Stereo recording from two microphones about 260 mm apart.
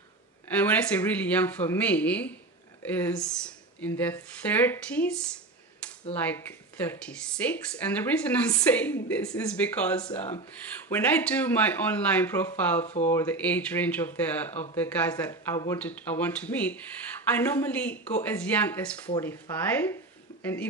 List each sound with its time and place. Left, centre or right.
0.6 s speech: centre
12.8 s speech: left
13.1 s speech: centre